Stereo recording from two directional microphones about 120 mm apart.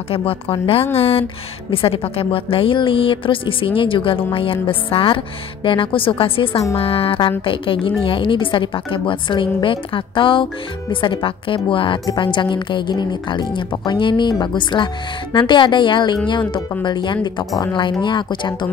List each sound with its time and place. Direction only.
0.1 s a woman's voice: 50° left (ahead or behind)